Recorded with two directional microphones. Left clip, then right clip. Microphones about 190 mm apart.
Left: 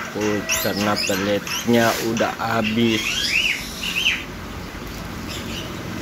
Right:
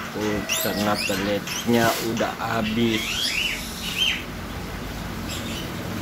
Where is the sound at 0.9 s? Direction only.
25° left (ahead or behind).